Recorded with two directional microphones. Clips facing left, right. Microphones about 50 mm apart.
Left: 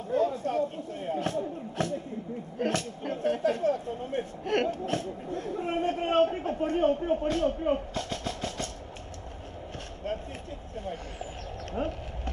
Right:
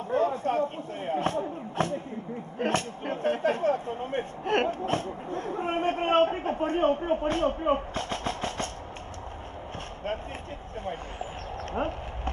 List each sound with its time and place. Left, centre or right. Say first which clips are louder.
0.1 s speech: right 1 dB; right
10.1 s speech: right 1 dB; right